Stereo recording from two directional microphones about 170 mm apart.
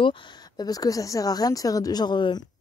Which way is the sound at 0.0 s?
25° left (ahead or behind).